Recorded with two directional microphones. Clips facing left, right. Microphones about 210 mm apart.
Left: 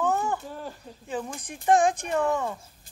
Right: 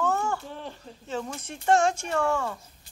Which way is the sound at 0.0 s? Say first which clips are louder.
Left 1 dB; 15° left (ahead or behind).